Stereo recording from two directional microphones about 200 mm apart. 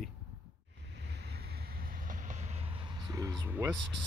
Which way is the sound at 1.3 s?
45° right (ahead or behind).